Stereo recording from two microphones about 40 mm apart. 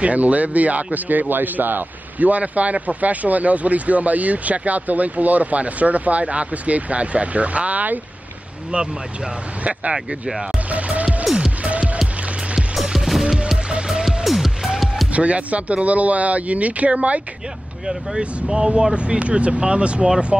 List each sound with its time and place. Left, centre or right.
0.0 s a man's voice: right
8.7 s speech: right
9.9 s speech: centre
10.7 s speech: right
11.3 s music: centre
11.6 s music: right
12.8 s music: centre
15.1 s speech: right
17.8 s speech: centre